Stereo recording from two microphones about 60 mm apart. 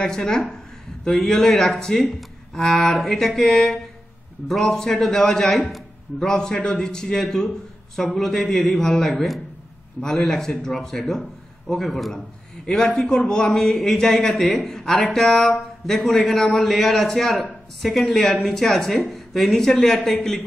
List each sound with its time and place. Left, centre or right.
0.0 s a man's voice: centre